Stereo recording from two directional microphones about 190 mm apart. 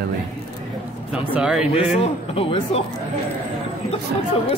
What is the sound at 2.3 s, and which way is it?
Speech, 30° left (ahead or behind).